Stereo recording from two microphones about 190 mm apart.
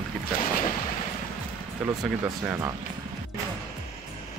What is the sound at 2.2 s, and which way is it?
Speech, 10° right (ahead or behind).